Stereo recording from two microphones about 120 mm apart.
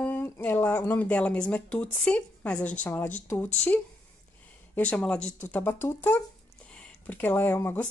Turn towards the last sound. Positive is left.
turn(degrees=15)  # may be behind; listen again after turning